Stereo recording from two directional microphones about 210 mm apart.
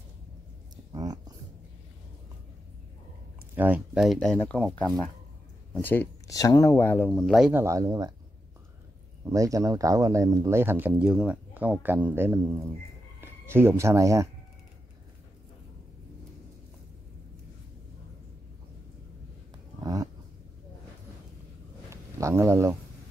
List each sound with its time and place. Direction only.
0.9 s a sound: 20° right (ahead or behind)
3.5 s speech: 10° right (ahead or behind)
7.6 s speech: 15° right (ahead or behind)
9.2 s speech: 15° right (ahead or behind)
19.8 s dog: 15° right (ahead or behind)
22.2 s speech: 10° right (ahead or behind)